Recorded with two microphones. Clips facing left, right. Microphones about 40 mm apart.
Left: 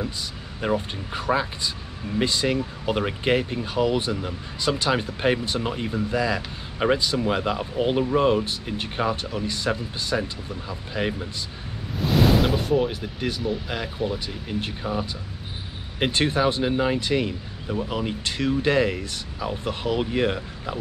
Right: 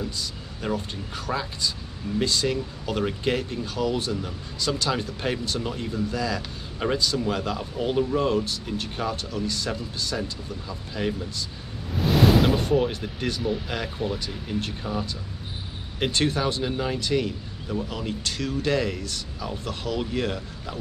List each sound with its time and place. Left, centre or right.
0.6 s speech: left
11.9 s speech: centre
14.2 s speech: centre